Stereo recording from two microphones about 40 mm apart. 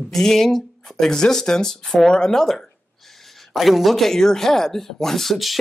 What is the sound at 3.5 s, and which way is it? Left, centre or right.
Speech, centre.